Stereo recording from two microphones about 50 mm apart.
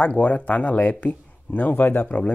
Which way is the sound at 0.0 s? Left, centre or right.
Left.